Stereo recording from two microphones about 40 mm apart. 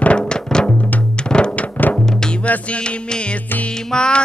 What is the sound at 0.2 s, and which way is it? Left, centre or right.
Music, centre.